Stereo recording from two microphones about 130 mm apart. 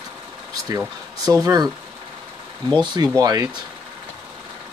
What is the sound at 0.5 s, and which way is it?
Speech, 30° right (ahead or behind).